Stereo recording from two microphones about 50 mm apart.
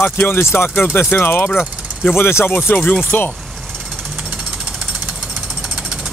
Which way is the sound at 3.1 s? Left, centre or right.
Left.